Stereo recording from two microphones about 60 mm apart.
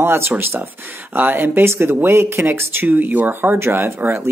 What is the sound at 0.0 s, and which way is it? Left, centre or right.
Speech, right.